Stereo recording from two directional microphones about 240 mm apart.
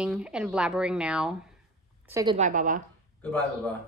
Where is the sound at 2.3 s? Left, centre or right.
Right.